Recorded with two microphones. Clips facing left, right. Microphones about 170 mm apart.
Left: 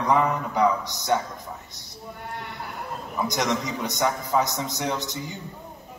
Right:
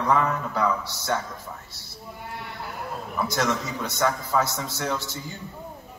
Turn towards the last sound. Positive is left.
turn(degrees=15)  # may be behind; listen again after turning